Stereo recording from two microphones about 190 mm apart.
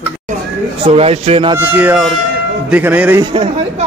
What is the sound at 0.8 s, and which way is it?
Speech, 30° right (ahead or behind).